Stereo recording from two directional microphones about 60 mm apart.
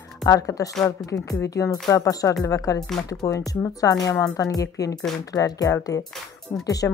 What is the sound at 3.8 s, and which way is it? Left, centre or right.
Speech, left.